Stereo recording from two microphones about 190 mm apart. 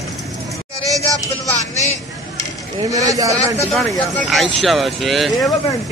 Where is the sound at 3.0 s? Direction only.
20° right (ahead or behind).